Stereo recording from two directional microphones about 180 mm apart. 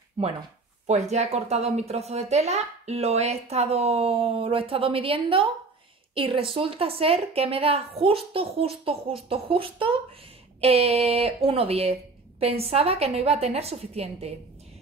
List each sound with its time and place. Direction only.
0.8 s a woman's voice: 40° right (ahead or behind)